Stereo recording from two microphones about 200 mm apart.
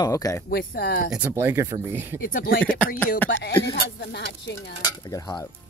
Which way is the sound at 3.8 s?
60° left (ahead or behind).